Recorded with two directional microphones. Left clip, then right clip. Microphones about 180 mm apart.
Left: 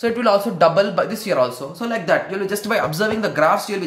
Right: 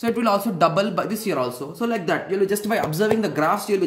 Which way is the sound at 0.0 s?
20° right (ahead or behind).